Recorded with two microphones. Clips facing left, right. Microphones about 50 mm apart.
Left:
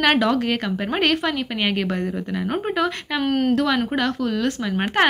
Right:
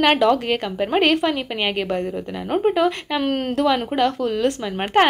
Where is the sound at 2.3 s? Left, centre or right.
Centre.